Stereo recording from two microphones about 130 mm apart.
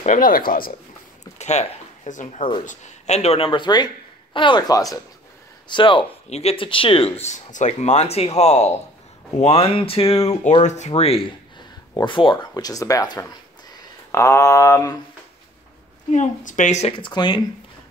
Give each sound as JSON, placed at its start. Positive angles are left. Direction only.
{"t": 0.0, "sound": "speech", "side_deg": 85}
{"t": 1.4, "sound": "a woman's voice", "side_deg": 60}
{"t": 7.2, "sound": "speech", "side_deg": 70}
{"t": 10.6, "sound": "speech", "side_deg": 65}
{"t": 16.1, "sound": "speech", "side_deg": 70}
{"t": 16.9, "sound": "speech", "side_deg": 35}